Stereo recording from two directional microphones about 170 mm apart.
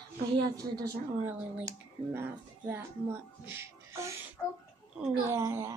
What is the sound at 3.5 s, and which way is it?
Music, 15° right (ahead or behind).